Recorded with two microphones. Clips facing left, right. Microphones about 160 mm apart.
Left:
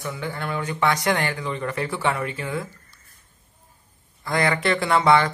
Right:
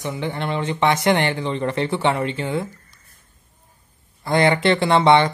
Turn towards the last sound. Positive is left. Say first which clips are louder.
# right 3 dB
turn(degrees=-25)  # may be behind; listen again after turning